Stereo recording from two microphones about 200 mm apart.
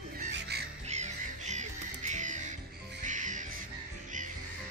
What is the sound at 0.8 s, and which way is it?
Music, 35° right (ahead or behind).